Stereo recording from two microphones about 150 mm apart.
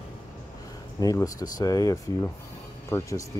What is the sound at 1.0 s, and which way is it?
Speech, 25° left (ahead or behind).